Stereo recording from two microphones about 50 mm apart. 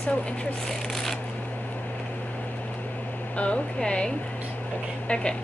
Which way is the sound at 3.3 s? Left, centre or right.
Left.